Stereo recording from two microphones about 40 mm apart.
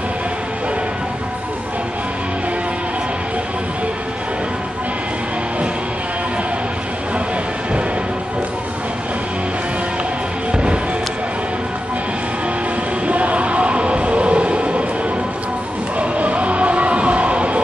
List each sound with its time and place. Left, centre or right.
10.5 s music: right
13.0 s train: right
16.0 s music: right